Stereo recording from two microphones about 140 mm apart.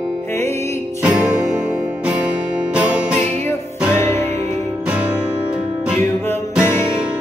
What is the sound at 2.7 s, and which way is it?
Music, 10° right (ahead or behind).